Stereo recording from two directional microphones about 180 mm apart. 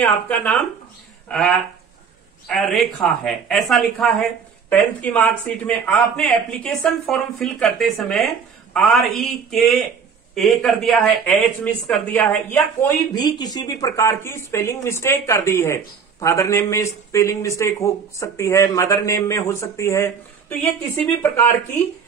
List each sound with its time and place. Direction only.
0.0 s speech: 10° left (ahead or behind)
2.4 s speech: centre (ahead or behind)